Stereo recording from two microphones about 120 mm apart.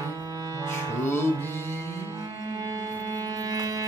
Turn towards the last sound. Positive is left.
turn(degrees=-30)  # may be behind; listen again after turning